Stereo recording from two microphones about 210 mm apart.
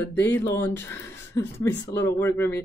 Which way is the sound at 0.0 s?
10° left (ahead or behind).